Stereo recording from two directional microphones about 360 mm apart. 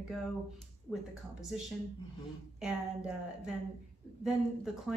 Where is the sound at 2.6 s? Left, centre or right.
Centre.